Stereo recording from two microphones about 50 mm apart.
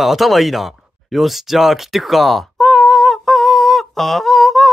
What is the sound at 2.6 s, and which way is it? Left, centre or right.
Humming, centre.